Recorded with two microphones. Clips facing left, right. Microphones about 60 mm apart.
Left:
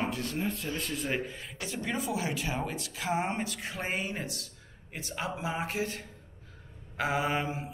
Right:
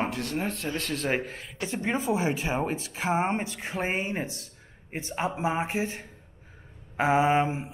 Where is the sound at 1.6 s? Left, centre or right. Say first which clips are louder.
Right 5 dB; right.